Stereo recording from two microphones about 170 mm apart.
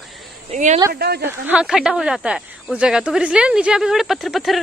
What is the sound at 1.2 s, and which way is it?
Speech, 5° right (ahead or behind).